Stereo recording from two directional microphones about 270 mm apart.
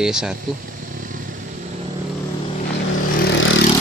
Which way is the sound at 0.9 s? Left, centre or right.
Right.